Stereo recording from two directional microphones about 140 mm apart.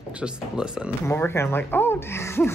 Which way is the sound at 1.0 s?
15° left (ahead or behind).